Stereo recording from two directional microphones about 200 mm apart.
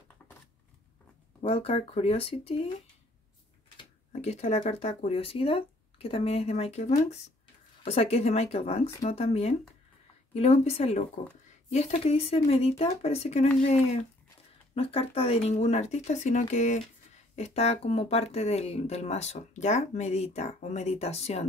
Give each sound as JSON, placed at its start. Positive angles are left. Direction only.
{"t": 0.2, "sound": "a sound", "side_deg": 10}
{"t": 1.4, "sound": "speech", "side_deg": 30}
{"t": 3.6, "sound": "speech", "side_deg": 30}
{"t": 14.8, "sound": "speech", "side_deg": 30}